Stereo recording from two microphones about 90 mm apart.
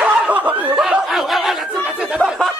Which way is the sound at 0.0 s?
15° right (ahead or behind).